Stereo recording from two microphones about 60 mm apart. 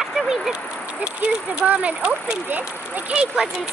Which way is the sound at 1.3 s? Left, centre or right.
Right.